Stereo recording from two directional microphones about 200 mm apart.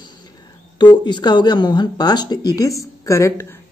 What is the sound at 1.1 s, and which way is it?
Speech, 20° left (ahead or behind).